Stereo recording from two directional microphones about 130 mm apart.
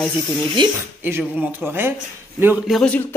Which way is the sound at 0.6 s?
35° right (ahead or behind).